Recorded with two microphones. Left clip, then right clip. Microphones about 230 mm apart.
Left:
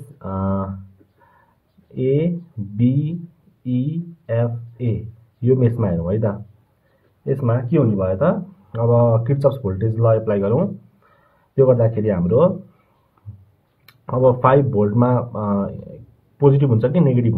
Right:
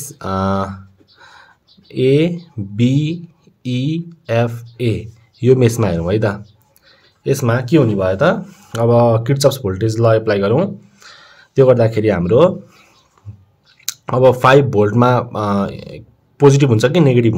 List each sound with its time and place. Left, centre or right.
0.2 s speech: right
2.0 s speech: right
13.8 s speech: right